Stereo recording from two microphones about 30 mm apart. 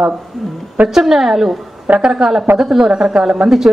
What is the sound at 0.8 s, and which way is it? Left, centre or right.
Speech, right.